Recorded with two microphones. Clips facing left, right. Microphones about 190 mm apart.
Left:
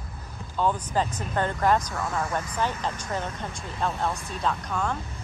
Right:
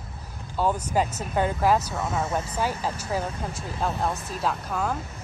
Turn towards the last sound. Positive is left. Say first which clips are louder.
# right 1 dB
turn(degrees=-5)  # may be behind; listen again after turning